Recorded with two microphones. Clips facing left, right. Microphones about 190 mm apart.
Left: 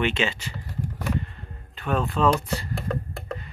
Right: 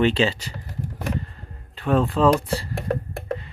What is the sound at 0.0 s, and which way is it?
Speech, 35° right (ahead or behind).